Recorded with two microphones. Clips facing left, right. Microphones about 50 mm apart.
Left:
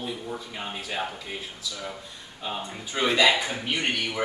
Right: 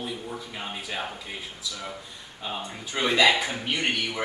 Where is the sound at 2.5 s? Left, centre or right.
Centre.